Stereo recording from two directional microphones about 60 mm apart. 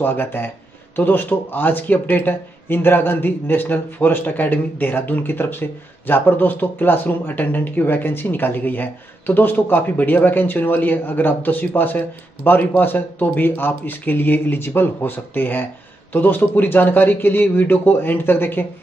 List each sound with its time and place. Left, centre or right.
0.0 s speech: left